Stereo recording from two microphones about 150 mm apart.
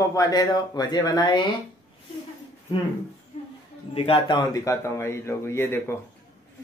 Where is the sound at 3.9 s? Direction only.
40° left (ahead or behind).